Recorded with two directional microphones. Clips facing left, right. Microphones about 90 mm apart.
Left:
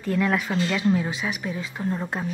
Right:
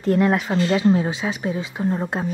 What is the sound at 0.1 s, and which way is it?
A woman's voice, 25° right (ahead or behind).